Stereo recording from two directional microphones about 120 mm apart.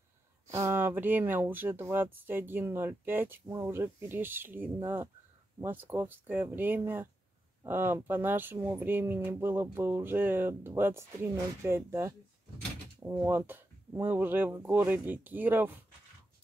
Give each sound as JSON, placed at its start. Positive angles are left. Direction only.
{"t": 0.5, "sound": "speech", "side_deg": -20}